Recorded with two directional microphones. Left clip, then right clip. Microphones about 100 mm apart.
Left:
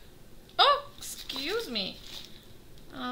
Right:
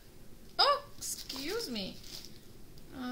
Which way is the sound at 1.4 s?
20° left (ahead or behind).